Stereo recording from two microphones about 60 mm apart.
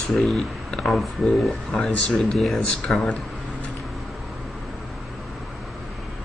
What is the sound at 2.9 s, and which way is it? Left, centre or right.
Speech, centre.